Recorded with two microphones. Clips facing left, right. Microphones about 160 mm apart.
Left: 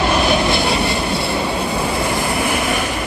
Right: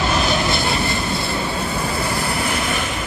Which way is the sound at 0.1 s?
15° left (ahead or behind).